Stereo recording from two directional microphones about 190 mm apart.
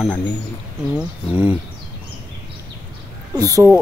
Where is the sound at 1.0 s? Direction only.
10° right (ahead or behind).